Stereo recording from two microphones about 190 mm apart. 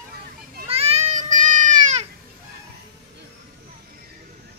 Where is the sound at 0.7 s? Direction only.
30° right (ahead or behind).